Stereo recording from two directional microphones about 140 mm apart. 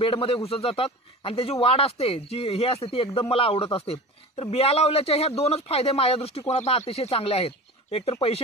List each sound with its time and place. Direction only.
0.0 s speech: 45° left (ahead or behind)